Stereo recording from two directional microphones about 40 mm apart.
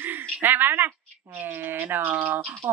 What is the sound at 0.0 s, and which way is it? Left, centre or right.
Speech, right.